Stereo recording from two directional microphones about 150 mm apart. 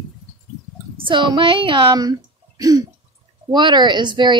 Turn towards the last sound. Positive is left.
turn(degrees=-30)  # may be behind; listen again after turning